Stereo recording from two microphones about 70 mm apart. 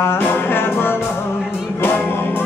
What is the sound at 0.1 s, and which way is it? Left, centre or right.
Music, left.